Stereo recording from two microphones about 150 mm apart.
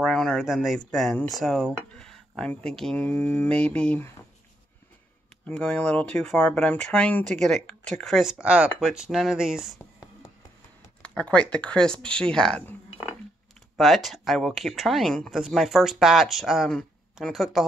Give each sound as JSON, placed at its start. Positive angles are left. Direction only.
{"t": 0.0, "sound": "speech", "side_deg": 5}
{"t": 5.5, "sound": "speech", "side_deg": 10}
{"t": 9.8, "sound": "a sound", "side_deg": 20}
{"t": 11.0, "sound": "speech", "side_deg": 5}